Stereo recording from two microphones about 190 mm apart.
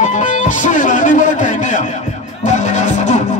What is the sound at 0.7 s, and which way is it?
Speech, 40° left (ahead or behind).